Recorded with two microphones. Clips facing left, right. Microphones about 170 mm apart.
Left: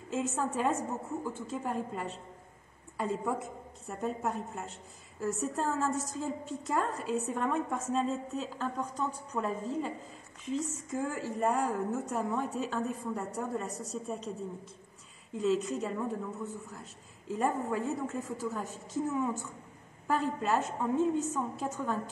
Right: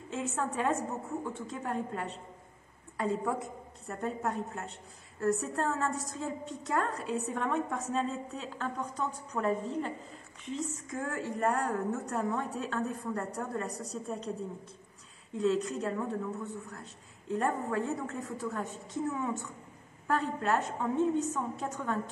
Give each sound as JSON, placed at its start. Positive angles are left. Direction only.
{"t": 0.1, "sound": "a woman's voice", "side_deg": 5}
{"t": 3.8, "sound": "a woman's voice", "side_deg": 0}
{"t": 15.3, "sound": "a woman's voice", "side_deg": 5}